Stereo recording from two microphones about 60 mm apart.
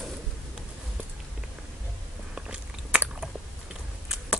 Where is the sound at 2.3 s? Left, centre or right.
Centre.